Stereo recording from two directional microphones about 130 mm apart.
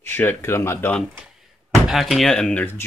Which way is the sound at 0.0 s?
15° left (ahead or behind).